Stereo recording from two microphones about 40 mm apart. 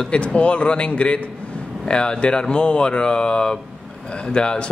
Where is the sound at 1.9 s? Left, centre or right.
Left.